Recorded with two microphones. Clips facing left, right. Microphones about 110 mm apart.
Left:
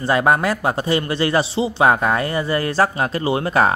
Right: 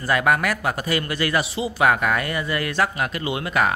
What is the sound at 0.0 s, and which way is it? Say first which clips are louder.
A man's voice: left 3 dB; 30° left (ahead or behind).